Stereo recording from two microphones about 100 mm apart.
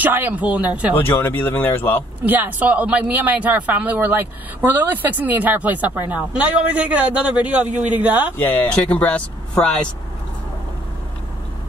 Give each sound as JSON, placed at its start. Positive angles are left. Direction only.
{"t": 0.0, "sound": "a man's voice", "side_deg": -20}
{"t": 0.9, "sound": "speech", "side_deg": 20}
{"t": 2.2, "sound": "a man's voice", "side_deg": -20}
{"t": 8.4, "sound": "speech", "side_deg": 20}